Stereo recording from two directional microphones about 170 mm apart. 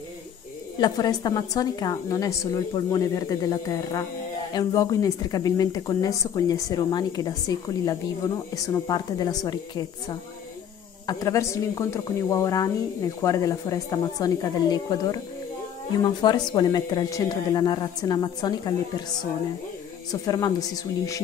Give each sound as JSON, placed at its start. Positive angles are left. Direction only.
{"t": 0.7, "sound": "speech", "side_deg": 25}
{"t": 20.1, "sound": "speech", "side_deg": 20}